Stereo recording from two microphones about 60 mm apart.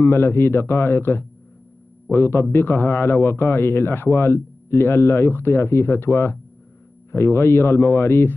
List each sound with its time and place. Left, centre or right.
0.0 s a man's voice: left